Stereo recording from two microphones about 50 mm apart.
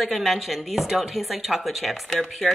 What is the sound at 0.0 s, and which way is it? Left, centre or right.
A woman's voice, centre.